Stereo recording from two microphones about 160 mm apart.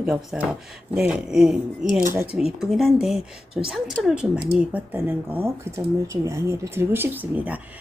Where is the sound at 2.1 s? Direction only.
15° right (ahead or behind).